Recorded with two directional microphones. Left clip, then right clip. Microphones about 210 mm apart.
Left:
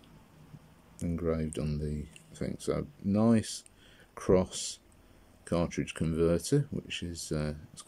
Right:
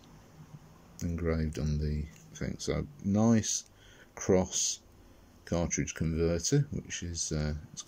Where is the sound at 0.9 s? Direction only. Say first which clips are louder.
Left 1 dB; 5° left (ahead or behind).